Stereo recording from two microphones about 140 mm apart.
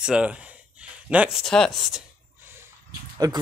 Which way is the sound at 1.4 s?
5° left (ahead or behind).